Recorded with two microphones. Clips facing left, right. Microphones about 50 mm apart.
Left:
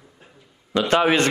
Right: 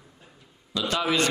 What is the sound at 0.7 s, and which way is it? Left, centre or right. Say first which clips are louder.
Speech: left 8 dB; left.